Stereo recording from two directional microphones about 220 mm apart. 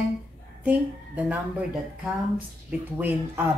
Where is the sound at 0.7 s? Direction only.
5° right (ahead or behind).